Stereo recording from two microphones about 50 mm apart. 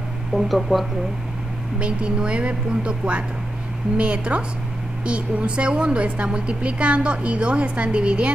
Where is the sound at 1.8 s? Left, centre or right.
Right.